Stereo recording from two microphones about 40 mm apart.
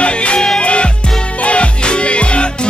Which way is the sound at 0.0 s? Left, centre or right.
Left.